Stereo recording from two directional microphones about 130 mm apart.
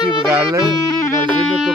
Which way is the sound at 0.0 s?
35° left (ahead or behind).